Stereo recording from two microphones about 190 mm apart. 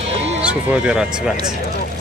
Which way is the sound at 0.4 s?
5° right (ahead or behind).